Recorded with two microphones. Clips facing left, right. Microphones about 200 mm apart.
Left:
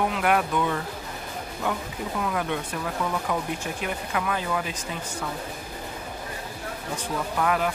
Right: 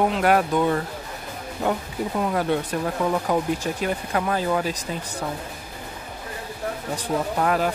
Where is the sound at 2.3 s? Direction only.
35° right (ahead or behind).